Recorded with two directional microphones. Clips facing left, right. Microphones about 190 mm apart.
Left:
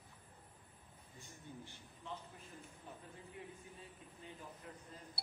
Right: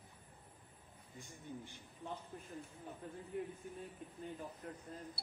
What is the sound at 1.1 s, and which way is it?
Speech, 15° right (ahead or behind).